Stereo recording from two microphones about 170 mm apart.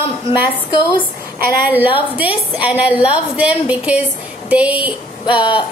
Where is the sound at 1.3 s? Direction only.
10° right (ahead or behind).